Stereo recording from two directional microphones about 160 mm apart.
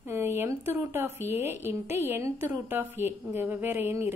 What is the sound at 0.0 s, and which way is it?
Speech, 15° right (ahead or behind).